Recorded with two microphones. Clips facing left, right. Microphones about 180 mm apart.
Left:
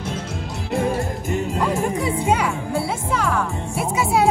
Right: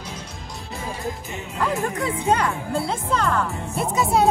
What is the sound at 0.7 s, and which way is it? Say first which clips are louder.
Music: left 8 dB; 60° left (ahead or behind).